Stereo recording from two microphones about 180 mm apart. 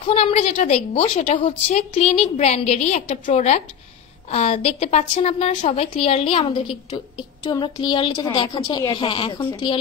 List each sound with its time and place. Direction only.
0.0 s a woman's voice: 35° left (ahead or behind)